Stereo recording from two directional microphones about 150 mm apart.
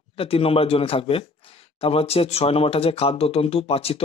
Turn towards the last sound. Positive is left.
turn(degrees=40)  # may be behind; listen again after turning